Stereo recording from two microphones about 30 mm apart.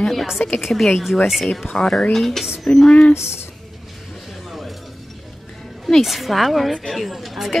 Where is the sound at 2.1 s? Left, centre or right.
Centre.